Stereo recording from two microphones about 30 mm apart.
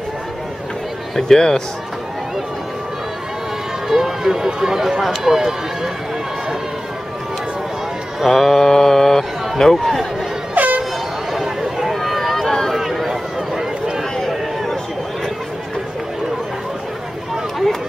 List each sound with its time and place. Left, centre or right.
1.1 s mantra: centre
3.9 s speech: centre
8.3 s mantra: centre
10.5 s air horn: right
11.9 s a sound: centre
12.7 s run: centre
13.6 s run: centre